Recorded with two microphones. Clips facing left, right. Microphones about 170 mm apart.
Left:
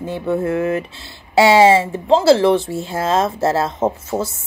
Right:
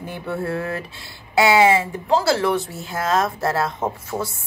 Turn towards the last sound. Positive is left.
turn(degrees=25)  # may be behind; listen again after turning